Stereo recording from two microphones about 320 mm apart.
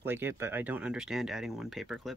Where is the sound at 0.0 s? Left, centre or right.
Centre.